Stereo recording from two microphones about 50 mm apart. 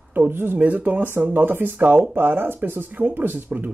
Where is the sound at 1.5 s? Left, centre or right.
Right.